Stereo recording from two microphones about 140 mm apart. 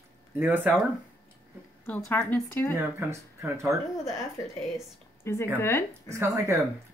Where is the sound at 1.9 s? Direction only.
10° left (ahead or behind).